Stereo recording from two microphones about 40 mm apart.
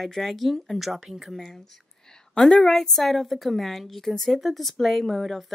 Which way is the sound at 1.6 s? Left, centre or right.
Centre.